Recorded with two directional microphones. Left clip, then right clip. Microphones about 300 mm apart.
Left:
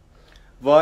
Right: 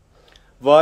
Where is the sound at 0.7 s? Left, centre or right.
Right.